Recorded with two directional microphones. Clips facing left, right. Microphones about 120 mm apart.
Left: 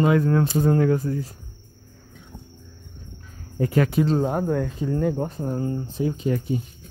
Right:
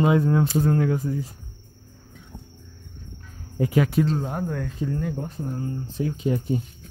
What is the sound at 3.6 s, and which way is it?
Speech, 10° right (ahead or behind).